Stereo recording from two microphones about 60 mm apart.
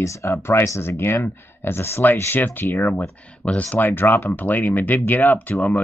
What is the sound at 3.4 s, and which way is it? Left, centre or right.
Speech, left.